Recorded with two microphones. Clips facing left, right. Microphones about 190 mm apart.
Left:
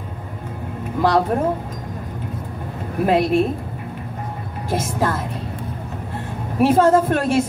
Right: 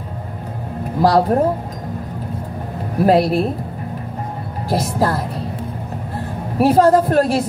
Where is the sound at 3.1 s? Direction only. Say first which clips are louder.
Right 2 dB; 35° right (ahead or behind).